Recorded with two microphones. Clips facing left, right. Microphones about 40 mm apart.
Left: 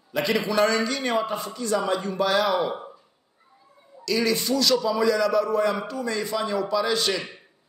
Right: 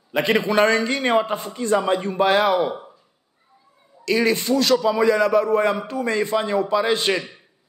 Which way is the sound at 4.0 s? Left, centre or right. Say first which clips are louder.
Right 4 dB; right.